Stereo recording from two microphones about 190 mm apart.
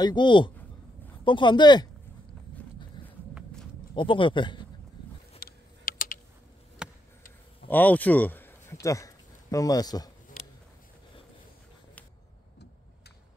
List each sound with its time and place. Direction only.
0.0 s speech: 25° left (ahead or behind)
3.0 s walk: 25° left (ahead or behind)
3.9 s speech: 25° left (ahead or behind)
5.4 s a sound: 50° left (ahead or behind)
6.8 s a sound: 5° right (ahead or behind)
7.7 s speech: 10° left (ahead or behind)